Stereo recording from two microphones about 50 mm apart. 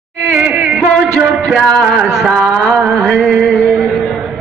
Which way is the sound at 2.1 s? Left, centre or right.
Centre.